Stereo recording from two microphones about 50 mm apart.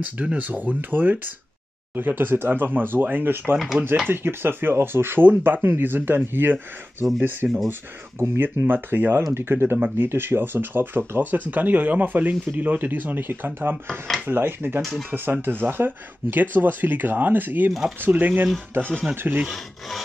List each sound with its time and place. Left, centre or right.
0.0 s speech: right
3.5 s rub: centre
4.1 s speech: right
8.2 s speech: right
13.8 s speech: centre
14.2 s speech: right
19.4 s rub: centre